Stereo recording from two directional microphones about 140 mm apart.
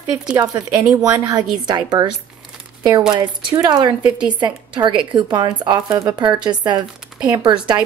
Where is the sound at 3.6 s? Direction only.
30° right (ahead or behind).